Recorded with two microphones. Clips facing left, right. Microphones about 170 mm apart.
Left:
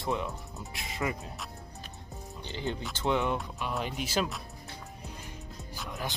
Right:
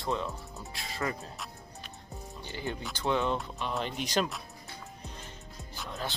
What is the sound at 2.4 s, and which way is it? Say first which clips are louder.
Speech: left 2 dB; 20° left (ahead or behind).